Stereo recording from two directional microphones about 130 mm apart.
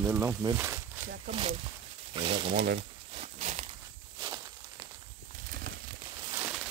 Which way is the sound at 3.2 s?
60° right (ahead or behind).